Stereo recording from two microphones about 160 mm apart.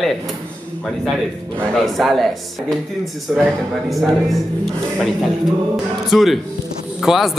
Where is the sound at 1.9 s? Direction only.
Centre (ahead or behind).